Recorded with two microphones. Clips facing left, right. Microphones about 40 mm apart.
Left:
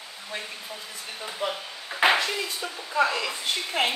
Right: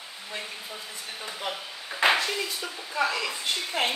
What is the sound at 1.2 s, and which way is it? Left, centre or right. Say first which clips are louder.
A woman's voice: left 4 dB; centre.